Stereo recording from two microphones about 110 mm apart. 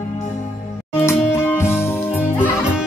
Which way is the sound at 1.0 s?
25° left (ahead or behind).